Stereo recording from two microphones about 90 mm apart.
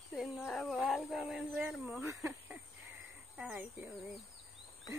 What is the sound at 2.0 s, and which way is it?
Speech, 30° right (ahead or behind).